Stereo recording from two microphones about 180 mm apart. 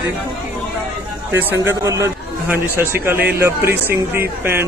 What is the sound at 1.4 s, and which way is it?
Speech, 10° right (ahead or behind).